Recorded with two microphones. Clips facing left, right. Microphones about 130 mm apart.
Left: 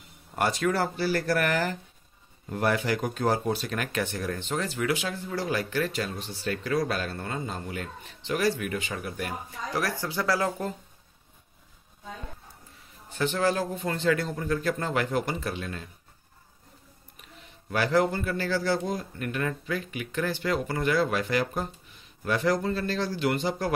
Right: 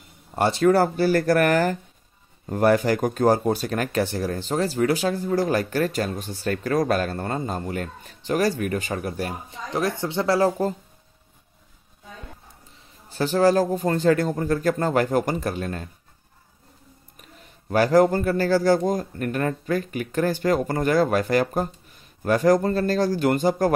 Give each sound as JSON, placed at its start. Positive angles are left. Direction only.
{"t": 0.4, "sound": "speech", "side_deg": -30}
{"t": 9.5, "sound": "speech", "side_deg": -25}
{"t": 12.7, "sound": "a man's voice", "side_deg": -35}
{"t": 17.2, "sound": "speech", "side_deg": -40}